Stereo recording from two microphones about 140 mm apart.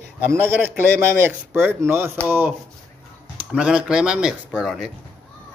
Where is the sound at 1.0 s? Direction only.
15° right (ahead or behind).